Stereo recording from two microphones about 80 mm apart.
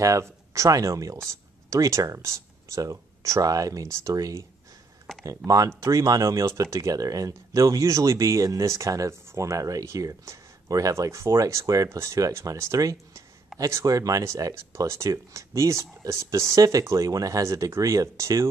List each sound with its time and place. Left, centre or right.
0.0 s speech: right
5.1 s a sound: centre
5.8 s speech: right